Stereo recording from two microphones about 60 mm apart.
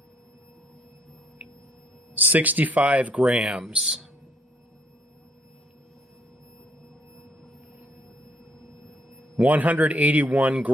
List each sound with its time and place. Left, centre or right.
2.1 s speech: right
3.3 s speech: centre
9.4 s speech: right